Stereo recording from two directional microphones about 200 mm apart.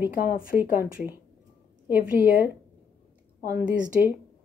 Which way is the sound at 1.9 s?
10° right (ahead or behind).